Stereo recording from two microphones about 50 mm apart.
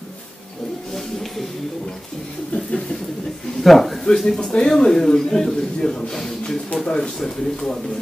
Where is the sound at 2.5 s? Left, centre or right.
Centre.